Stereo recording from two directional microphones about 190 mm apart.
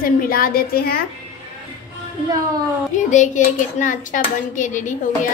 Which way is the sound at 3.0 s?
40° left (ahead or behind).